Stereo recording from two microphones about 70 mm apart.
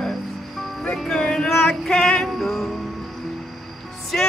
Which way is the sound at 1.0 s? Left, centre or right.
Centre.